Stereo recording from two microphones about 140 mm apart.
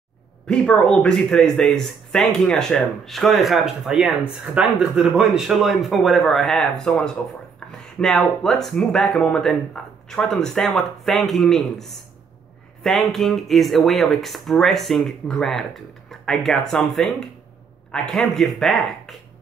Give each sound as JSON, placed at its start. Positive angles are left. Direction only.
{"t": 0.5, "sound": "speech", "side_deg": 5}
{"t": 7.6, "sound": "a sound", "side_deg": 5}
{"t": 8.0, "sound": "speech", "side_deg": 5}